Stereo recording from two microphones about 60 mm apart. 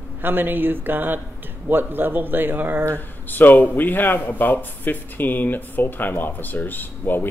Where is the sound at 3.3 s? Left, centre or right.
Left.